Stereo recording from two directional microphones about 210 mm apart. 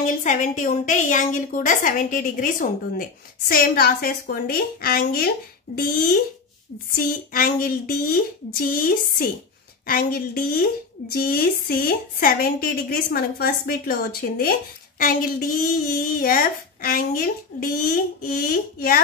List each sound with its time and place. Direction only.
0.0 s a woman's voice: 35° left (ahead or behind)